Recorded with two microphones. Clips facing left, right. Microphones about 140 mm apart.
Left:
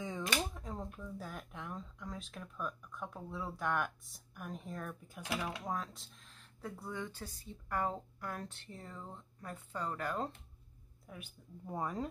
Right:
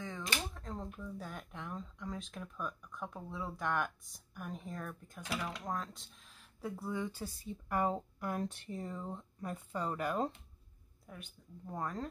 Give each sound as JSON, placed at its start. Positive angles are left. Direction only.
{"t": 0.0, "sound": "speech", "side_deg": 10}
{"t": 11.1, "sound": "speech", "side_deg": 5}